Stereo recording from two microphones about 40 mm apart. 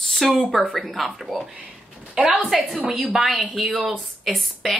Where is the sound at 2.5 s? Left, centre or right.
Centre.